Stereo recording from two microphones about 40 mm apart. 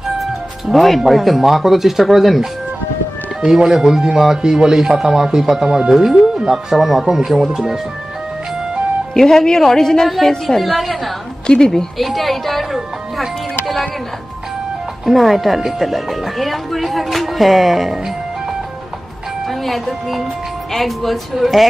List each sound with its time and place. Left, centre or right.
0.0 s speech: centre
3.4 s speech: centre
9.1 s a woman's voice: centre
10.0 s speech: centre
11.4 s a woman's voice: centre
12.0 s speech: centre
13.2 s music: centre
15.0 s speech: centre
19.4 s speech: centre